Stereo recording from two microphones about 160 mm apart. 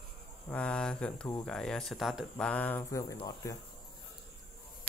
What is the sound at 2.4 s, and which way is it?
Speech, 10° left (ahead or behind).